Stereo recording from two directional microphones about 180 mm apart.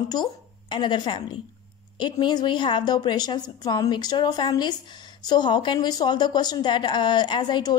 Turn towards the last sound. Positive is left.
turn(degrees=25)  # may be behind; listen again after turning